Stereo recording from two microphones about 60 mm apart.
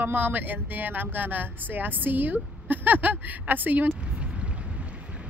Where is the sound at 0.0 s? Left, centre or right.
Right.